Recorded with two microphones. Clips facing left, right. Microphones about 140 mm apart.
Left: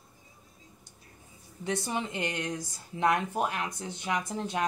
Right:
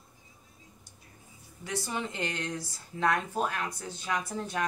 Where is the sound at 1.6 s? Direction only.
20° left (ahead or behind).